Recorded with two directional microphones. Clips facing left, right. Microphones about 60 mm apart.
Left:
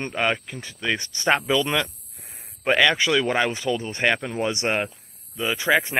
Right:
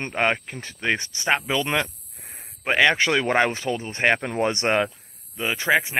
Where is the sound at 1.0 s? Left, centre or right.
Right.